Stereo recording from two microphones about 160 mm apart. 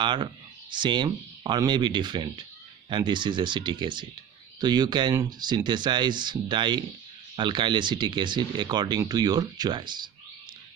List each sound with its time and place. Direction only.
0.0 s speech: 30° right (ahead or behind)